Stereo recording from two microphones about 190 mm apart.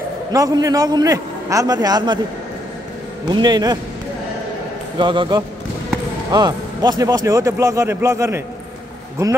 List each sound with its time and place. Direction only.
0.3 s a man's voice: 20° right (ahead or behind)
3.3 s a man's voice: 20° right (ahead or behind)
4.9 s a man's voice: 25° right (ahead or behind)